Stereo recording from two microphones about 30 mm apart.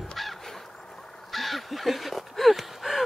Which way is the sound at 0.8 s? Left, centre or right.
Left.